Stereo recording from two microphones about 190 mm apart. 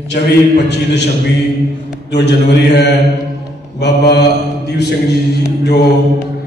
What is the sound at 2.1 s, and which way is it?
Mantra, 65° left (ahead or behind).